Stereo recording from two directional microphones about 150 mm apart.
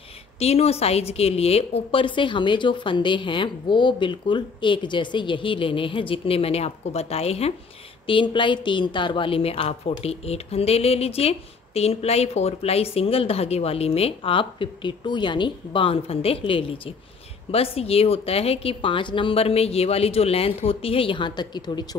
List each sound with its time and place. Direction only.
0.4 s a woman's voice: 45° left (ahead or behind)